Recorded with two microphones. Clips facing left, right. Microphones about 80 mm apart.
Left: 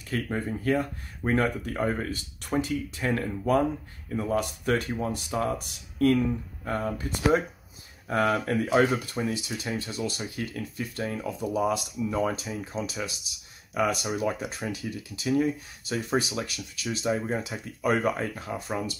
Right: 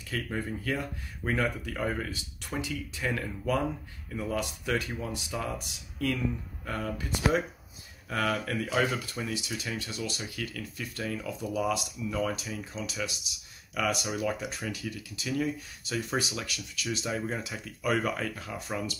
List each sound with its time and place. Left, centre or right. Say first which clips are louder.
0.0 s speech: left 4 dB; left